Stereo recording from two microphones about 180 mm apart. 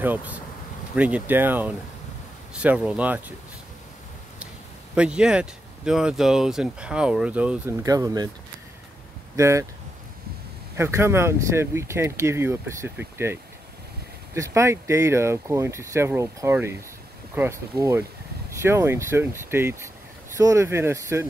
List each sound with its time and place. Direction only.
0.0 s speech: 10° right (ahead or behind)
4.9 s speech: 5° right (ahead or behind)
9.4 s speech: 15° right (ahead or behind)
10.8 s speech: 15° right (ahead or behind)